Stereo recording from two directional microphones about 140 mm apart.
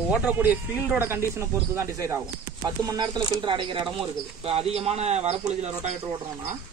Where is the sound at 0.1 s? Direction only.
10° right (ahead or behind); by 5.9 s 55° right (ahead or behind).